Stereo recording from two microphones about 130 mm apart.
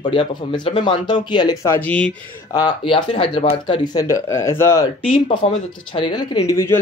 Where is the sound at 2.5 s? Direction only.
35° left (ahead or behind).